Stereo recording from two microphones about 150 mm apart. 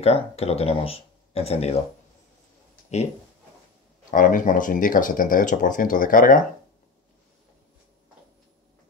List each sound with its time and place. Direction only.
0.0 s speech: 40° left (ahead or behind)
4.1 s speech: 60° left (ahead or behind)